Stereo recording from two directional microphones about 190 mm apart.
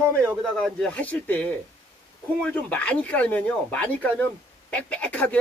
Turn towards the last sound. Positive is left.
turn(degrees=5)  # may be behind; listen again after turning